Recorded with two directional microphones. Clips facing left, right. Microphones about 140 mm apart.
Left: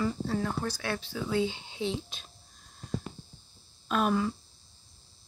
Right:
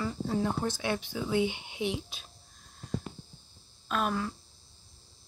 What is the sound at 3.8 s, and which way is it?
Speech, centre (ahead or behind).